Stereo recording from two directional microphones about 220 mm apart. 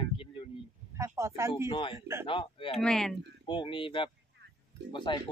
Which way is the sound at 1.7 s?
20° left (ahead or behind).